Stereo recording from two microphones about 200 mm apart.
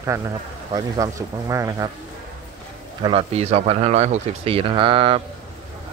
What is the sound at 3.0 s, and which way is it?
Speech, 30° right (ahead or behind).